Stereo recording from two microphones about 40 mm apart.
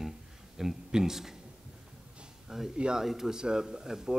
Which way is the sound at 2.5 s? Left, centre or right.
Centre.